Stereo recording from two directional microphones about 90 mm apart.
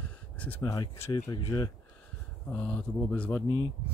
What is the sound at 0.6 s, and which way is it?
Speech, 40° left (ahead or behind).